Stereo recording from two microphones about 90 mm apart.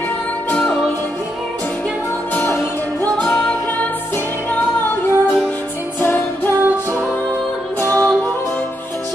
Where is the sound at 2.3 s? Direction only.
25° left (ahead or behind).